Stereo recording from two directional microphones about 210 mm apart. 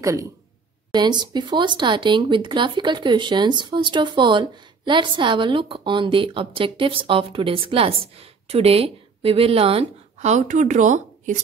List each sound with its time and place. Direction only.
0.0 s speech: 15° right (ahead or behind); by 11.4 s 35° right (ahead or behind)